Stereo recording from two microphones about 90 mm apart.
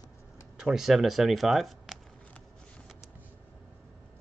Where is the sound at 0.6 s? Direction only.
5° right (ahead or behind).